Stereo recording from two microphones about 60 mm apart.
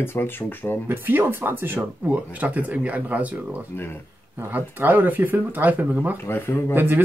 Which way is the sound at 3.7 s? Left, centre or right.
Left.